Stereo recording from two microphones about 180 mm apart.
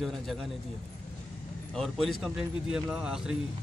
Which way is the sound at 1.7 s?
Centre (ahead or behind).